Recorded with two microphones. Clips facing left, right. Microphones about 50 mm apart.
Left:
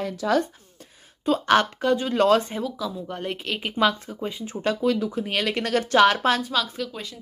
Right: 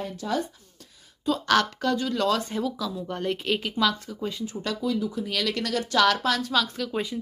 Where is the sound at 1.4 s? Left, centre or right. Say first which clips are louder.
Left 2 dB; left.